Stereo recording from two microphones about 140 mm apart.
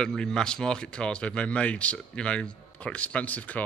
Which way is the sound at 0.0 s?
5° left (ahead or behind).